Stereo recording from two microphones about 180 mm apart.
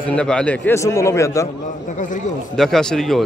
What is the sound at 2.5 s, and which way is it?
Speech, centre (ahead or behind).